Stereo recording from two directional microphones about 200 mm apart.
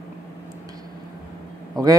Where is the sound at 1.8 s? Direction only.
20° right (ahead or behind).